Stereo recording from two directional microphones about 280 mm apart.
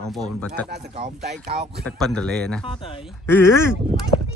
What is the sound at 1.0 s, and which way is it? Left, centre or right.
Speech, right.